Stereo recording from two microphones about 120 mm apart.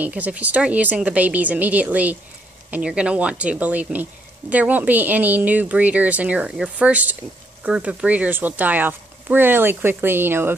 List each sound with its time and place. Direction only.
0.0 s speech: 10° right (ahead or behind)